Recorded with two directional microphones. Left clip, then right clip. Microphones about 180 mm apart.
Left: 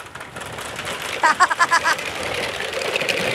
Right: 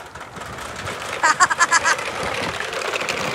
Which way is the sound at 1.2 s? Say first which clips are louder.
Even; 5° right (ahead or behind).